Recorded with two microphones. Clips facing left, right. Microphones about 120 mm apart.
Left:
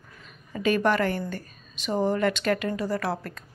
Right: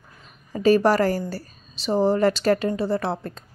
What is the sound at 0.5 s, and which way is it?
A woman's voice, 35° right (ahead or behind).